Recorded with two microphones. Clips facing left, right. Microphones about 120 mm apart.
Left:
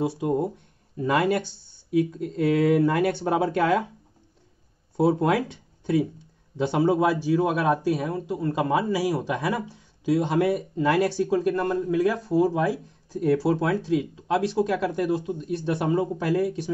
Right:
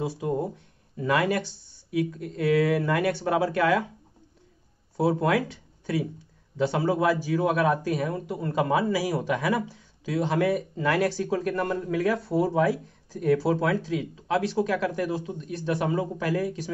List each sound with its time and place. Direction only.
0.0 s speech: 20° left (ahead or behind)
4.9 s speech: 20° left (ahead or behind)
6.5 s speech: 20° left (ahead or behind)
8.3 s a man's voice: 5° left (ahead or behind)
8.7 s speech: 15° left (ahead or behind)
13.1 s speech: 25° left (ahead or behind)